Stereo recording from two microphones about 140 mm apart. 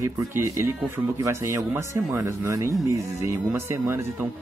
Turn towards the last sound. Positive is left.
turn(degrees=-15)  # may be behind; listen again after turning